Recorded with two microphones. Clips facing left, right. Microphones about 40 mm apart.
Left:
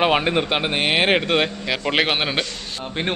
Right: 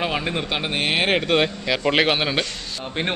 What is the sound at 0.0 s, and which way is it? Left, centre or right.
Speech, left.